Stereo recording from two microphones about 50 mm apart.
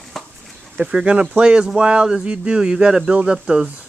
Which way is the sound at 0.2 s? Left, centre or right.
Centre.